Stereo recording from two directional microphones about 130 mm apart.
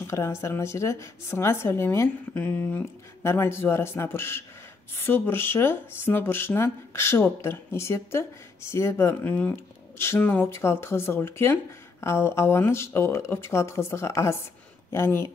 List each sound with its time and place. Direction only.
0.0 s speech: 20° left (ahead or behind)